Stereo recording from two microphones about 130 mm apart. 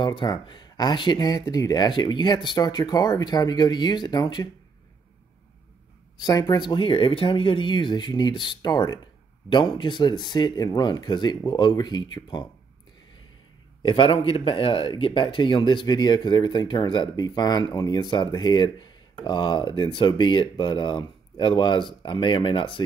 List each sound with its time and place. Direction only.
0.0 s speech: 35° left (ahead or behind)
6.2 s speech: 30° left (ahead or behind)
13.8 s speech: 40° left (ahead or behind)